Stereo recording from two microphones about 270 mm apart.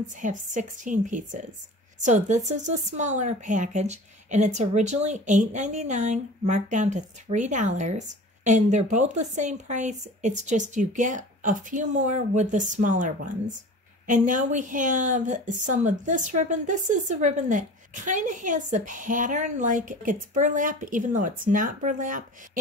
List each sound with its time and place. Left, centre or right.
0.2 s a woman's voice: right